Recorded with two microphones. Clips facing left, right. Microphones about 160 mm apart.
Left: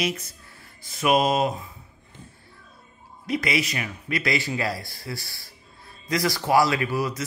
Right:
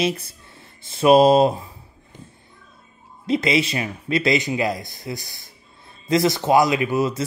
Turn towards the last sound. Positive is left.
turn(degrees=-25)  # may be behind; listen again after turning